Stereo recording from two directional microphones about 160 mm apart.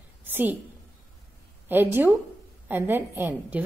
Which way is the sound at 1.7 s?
10° right (ahead or behind).